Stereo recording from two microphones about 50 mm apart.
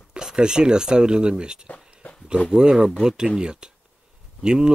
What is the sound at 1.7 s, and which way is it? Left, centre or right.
Dog, left.